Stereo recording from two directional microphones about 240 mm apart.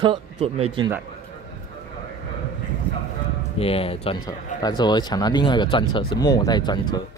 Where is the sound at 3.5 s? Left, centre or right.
Left.